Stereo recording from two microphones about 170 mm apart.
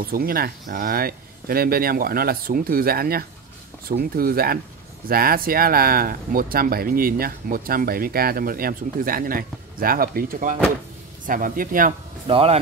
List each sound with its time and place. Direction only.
0.0 s speech: 60° right (ahead or behind)
12.3 s speech: 35° right (ahead or behind)